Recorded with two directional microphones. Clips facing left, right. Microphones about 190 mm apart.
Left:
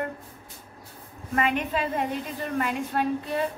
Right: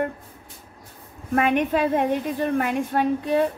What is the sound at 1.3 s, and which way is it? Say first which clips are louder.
A woman's voice: right 6 dB; 55° right (ahead or behind).